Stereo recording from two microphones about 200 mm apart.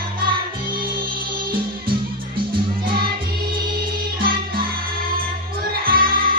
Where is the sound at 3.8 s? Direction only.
50° right (ahead or behind).